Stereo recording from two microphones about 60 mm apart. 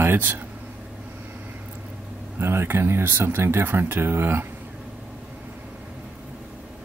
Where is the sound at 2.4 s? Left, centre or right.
Right.